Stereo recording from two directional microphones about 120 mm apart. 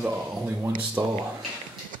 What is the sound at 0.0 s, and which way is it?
Speech, 10° right (ahead or behind).